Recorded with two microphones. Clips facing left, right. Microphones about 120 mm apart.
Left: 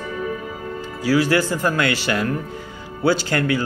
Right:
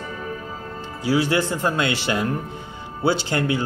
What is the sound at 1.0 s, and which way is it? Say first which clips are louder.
Speech: left 2 dB; 25° right (ahead or behind).